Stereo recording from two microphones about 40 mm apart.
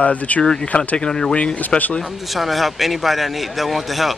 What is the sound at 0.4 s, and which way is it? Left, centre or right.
Speech, centre.